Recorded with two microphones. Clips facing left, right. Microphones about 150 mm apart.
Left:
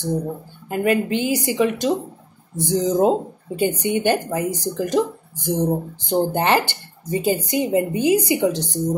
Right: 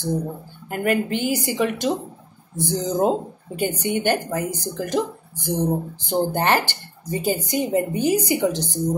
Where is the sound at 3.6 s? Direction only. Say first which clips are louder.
Left 3 dB; 25° left (ahead or behind).